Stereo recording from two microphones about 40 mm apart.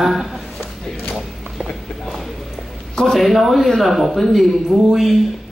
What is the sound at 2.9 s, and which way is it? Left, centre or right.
A man's voice, centre.